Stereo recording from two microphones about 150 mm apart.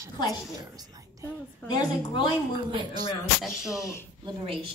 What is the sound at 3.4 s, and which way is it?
Speech, 5° right (ahead or behind).